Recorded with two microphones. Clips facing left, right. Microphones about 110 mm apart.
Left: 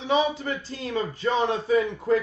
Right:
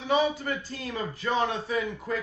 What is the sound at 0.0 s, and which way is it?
Speech, 25° left (ahead or behind).